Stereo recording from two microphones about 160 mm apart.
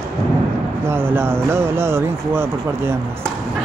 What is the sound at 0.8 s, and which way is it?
Speech, 15° right (ahead or behind).